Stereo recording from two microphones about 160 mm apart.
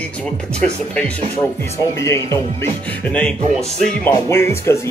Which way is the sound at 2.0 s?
20° left (ahead or behind).